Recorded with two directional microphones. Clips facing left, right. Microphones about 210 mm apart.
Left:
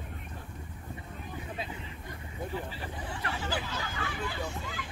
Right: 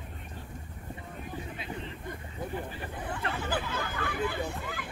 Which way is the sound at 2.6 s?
55° right (ahead or behind).